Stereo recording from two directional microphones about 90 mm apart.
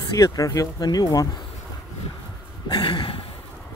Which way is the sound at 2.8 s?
75° left (ahead or behind).